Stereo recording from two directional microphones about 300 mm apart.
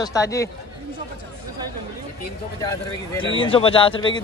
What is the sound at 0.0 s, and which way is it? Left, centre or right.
Speech, centre.